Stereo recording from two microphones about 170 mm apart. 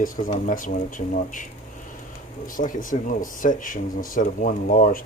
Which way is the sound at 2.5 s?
50° left (ahead or behind).